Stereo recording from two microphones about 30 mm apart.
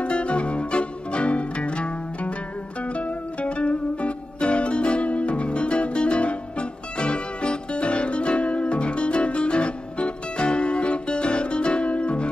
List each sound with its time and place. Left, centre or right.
0.0 s music: left